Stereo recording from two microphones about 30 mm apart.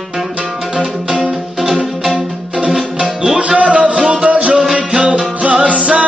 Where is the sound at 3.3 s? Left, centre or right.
Right.